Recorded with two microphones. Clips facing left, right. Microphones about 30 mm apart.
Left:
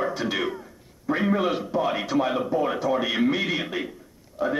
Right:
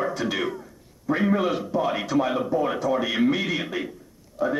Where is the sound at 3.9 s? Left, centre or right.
Centre.